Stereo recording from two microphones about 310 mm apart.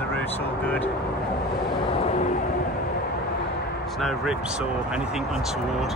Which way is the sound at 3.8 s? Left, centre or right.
Centre.